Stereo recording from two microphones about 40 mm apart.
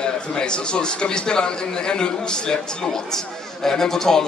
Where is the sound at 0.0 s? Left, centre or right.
Left.